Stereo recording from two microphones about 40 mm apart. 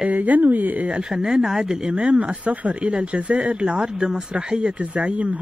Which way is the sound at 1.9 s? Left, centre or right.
Right.